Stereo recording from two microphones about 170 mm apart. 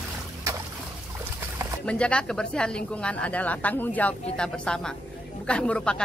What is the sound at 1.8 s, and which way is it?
Speech, 5° left (ahead or behind).